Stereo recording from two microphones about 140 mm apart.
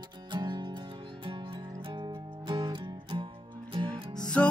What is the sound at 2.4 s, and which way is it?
Music, 35° right (ahead or behind).